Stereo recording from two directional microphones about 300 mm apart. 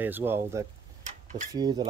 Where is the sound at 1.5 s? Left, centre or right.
Centre.